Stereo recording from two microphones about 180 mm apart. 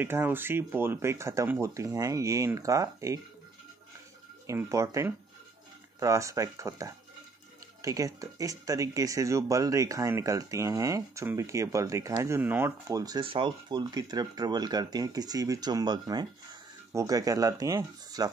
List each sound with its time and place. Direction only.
0.0 s speech: 10° right (ahead or behind)
4.5 s speech: 15° right (ahead or behind)